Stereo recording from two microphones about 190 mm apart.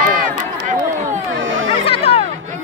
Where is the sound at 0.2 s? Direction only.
40° right (ahead or behind).